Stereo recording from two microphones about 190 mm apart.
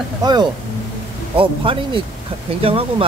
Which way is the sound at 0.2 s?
20° right (ahead or behind).